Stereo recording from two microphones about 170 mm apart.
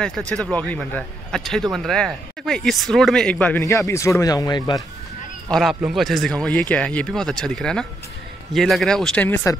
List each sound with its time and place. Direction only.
0.0 s speech: 5° left (ahead or behind); by 4.8 s 25° left (ahead or behind)
5.5 s speech: centre (ahead or behind)